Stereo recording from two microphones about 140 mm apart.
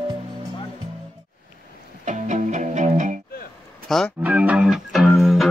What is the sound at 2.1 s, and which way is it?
Music, 60° right (ahead or behind).